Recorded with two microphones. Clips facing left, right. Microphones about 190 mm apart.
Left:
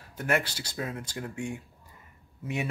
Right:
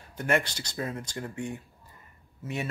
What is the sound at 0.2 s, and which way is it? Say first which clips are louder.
Speech: right 1 dB; 5° left (ahead or behind).